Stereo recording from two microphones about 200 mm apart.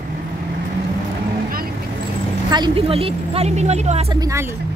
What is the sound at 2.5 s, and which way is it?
Speech, 25° right (ahead or behind).